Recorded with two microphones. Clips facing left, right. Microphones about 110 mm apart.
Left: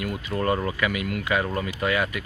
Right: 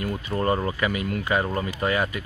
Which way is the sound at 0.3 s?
25° right (ahead or behind).